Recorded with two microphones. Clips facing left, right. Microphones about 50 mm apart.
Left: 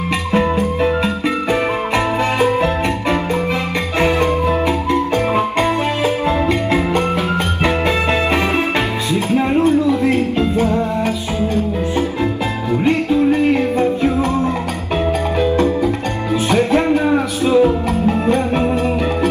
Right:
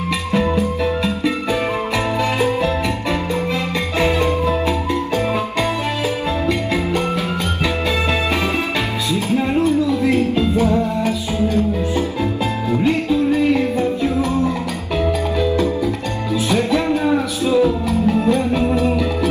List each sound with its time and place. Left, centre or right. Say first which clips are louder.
0.3 s music: left 2 dB; left
9.1 s music: left 3 dB; left
12.8 s music: left 3 dB; left
15.4 s music: left 4 dB; left